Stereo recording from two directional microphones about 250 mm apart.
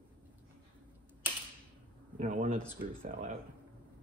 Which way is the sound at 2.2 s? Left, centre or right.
Right.